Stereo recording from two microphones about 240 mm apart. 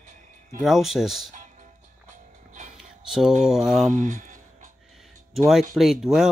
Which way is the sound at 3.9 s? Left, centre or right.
Right.